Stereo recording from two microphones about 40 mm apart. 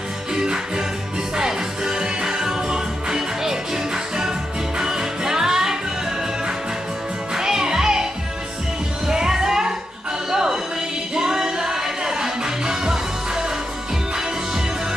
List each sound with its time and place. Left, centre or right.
0.3 s music: centre
7.3 s music: centre